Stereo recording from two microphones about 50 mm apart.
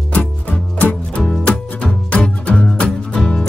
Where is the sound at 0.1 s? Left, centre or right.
Left.